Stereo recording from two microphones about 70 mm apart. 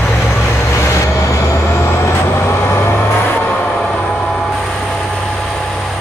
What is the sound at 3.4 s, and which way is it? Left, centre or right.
Vehicle, centre.